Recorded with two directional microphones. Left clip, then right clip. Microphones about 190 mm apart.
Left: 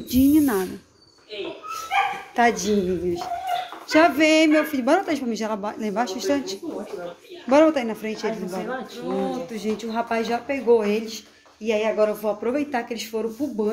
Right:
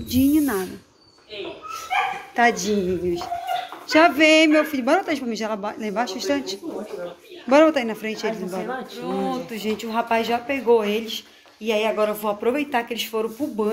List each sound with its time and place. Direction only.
0.1 s speech: 20° left (ahead or behind)
2.3 s a woman's voice: 15° left (ahead or behind)
7.4 s speech: 5° left (ahead or behind)